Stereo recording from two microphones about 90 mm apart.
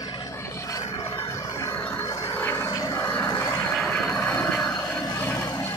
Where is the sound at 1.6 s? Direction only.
35° left (ahead or behind).